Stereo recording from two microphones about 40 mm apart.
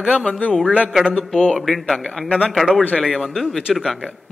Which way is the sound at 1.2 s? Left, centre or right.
Centre.